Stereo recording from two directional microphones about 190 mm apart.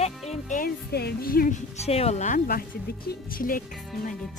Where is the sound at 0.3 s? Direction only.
45° left (ahead or behind).